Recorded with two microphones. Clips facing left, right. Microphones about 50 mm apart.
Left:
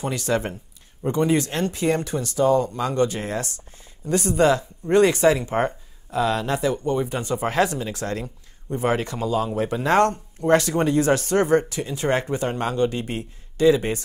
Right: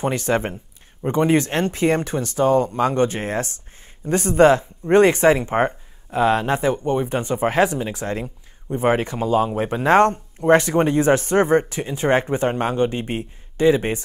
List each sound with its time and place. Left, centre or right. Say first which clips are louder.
0.0 s speech: right 3 dB; right